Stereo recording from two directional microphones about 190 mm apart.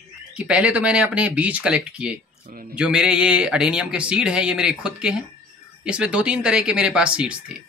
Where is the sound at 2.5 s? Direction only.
50° right (ahead or behind).